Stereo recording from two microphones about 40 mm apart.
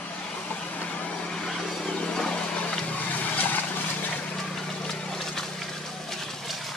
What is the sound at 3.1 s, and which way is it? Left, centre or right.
Vehicle, left.